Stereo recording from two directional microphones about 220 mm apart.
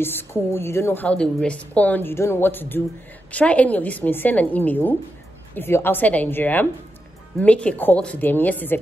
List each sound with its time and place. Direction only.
0.0 s a woman's voice: 10° left (ahead or behind)